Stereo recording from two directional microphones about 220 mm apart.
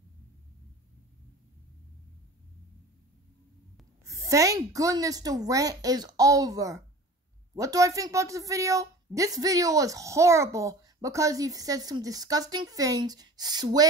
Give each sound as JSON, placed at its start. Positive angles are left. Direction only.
{"t": 4.0, "sound": "a woman's voice", "side_deg": -15}